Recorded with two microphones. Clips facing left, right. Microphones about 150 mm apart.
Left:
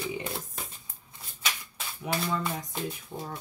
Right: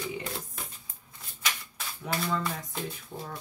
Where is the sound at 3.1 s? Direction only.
5° left (ahead or behind).